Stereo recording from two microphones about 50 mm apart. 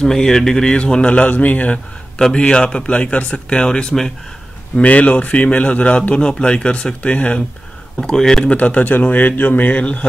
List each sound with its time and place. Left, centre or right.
0.0 s a man's voice: centre; by 1.8 s left
2.1 s speech: centre
4.7 s a man's voice: left
8.0 s speech: centre
8.5 s a man's voice: left